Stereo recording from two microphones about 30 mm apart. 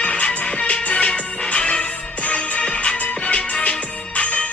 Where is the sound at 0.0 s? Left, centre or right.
Left.